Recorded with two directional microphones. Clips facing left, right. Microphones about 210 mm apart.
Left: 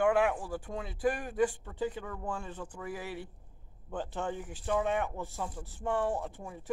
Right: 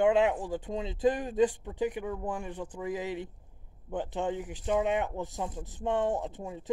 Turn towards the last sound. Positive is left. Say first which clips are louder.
# right 3 dB
turn(degrees=-20)  # may be behind; listen again after turning